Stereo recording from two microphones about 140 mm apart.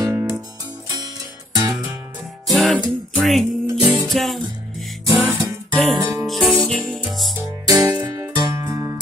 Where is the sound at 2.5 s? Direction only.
Centre (ahead or behind).